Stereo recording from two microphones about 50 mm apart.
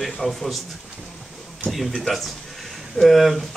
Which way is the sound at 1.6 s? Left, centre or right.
Centre.